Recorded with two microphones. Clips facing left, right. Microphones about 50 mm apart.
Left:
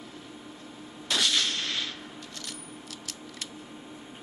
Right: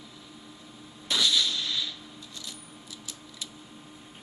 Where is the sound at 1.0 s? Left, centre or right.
Left.